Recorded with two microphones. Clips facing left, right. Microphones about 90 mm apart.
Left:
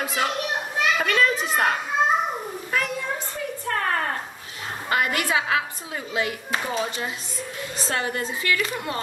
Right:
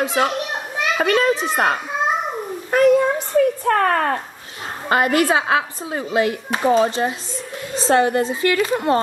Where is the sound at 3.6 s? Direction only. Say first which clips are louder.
Right 8 dB; 60° right (ahead or behind).